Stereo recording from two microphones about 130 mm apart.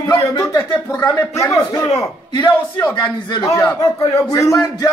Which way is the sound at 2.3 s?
40° left (ahead or behind).